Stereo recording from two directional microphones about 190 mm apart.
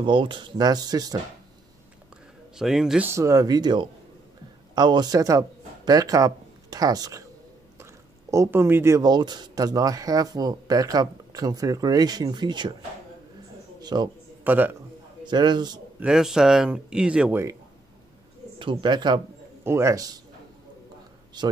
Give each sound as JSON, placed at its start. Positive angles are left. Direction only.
{"t": 0.0, "sound": "speech", "side_deg": -25}
{"t": 2.5, "sound": "a man's voice", "side_deg": 0}
{"t": 13.7, "sound": "a man's voice", "side_deg": -20}
{"t": 14.4, "sound": "a man's voice", "side_deg": -10}
{"t": 15.2, "sound": "speech", "side_deg": -25}
{"t": 16.0, "sound": "speech", "side_deg": -5}
{"t": 18.6, "sound": "a man's voice", "side_deg": -25}
{"t": 21.4, "sound": "speech", "side_deg": -20}